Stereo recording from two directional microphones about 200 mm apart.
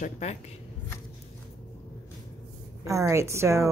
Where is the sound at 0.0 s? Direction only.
35° left (ahead or behind).